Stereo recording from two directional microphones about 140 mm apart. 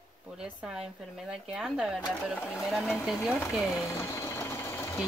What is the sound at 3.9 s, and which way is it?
Sewing machine, 20° left (ahead or behind).